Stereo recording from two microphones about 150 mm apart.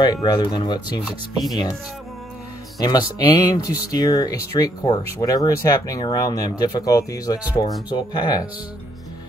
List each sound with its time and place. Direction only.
0.0 s speech: 25° left (ahead or behind)
2.8 s speech: 25° left (ahead or behind)